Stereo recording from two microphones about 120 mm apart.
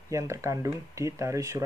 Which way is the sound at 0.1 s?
25° right (ahead or behind).